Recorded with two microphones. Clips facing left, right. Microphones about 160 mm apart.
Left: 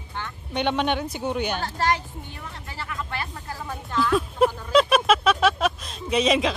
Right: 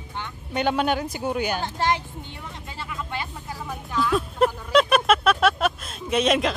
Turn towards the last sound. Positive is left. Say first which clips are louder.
# even
turn(degrees=0)  # may be behind; listen again after turning